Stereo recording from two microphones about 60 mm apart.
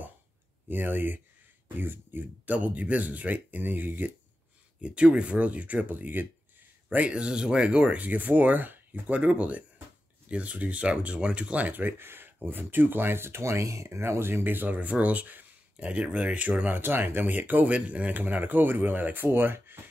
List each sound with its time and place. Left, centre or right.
0.7 s speech: right
4.8 s speech: centre
7.2 s speech: centre; by 19.8 s right